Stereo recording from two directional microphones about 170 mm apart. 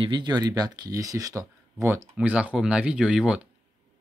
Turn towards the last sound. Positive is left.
turn(degrees=-5)  # may be behind; listen again after turning